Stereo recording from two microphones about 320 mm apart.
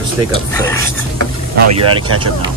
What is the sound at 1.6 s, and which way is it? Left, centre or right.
Speech, right.